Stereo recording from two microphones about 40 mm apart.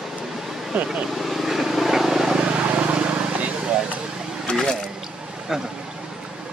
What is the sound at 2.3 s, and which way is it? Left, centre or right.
Vehicle, right.